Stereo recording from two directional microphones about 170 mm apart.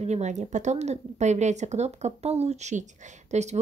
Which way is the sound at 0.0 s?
40° right (ahead or behind).